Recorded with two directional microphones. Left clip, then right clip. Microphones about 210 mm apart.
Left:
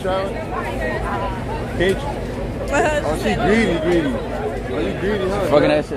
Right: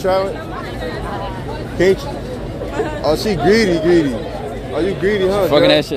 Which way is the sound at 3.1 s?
30° right (ahead or behind).